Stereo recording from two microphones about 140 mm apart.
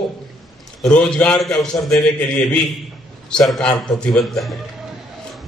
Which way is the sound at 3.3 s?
5° left (ahead or behind).